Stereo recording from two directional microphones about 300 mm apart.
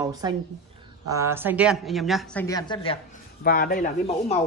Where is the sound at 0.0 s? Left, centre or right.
Centre.